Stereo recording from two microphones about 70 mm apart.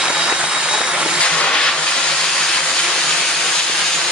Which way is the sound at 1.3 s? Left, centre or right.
Centre.